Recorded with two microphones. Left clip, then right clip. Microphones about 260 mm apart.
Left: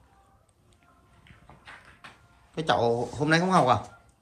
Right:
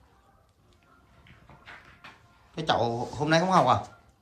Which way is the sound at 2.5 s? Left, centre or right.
Centre.